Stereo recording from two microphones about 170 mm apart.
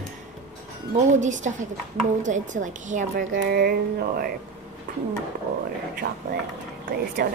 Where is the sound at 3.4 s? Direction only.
65° right (ahead or behind).